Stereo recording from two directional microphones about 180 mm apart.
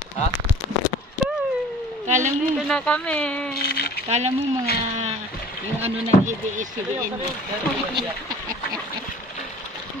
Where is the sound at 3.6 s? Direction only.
60° left (ahead or behind).